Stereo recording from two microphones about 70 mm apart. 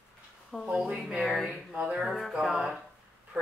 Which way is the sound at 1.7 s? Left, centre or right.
Centre.